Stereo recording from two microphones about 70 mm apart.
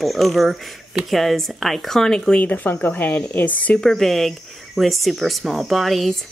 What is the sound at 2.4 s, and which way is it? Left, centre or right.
Speech, left.